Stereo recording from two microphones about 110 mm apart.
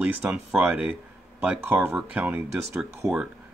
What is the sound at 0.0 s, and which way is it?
Speech, 15° right (ahead or behind).